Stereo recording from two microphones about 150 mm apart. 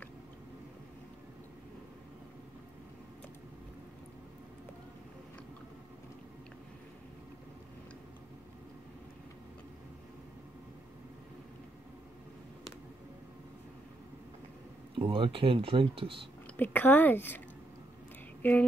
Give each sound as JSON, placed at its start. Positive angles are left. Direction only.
{"t": 15.0, "sound": "speech", "side_deg": -35}
{"t": 16.5, "sound": "a woman's voice", "side_deg": 10}
{"t": 18.4, "sound": "speech", "side_deg": 10}